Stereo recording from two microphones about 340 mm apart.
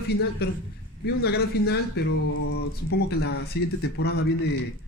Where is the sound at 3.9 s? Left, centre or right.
Left.